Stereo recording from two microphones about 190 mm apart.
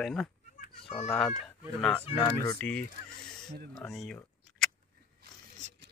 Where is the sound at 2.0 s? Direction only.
30° left (ahead or behind).